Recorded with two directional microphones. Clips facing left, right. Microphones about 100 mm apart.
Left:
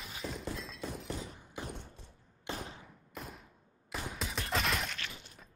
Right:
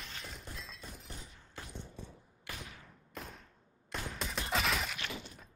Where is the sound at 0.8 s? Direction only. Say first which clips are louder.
Left 10 dB; 90° left.